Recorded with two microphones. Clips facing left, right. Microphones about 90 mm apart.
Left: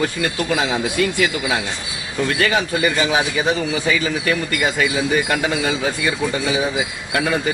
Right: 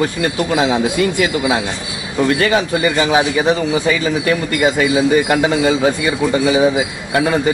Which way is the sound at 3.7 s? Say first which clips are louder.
Right 4 dB; 30° right (ahead or behind).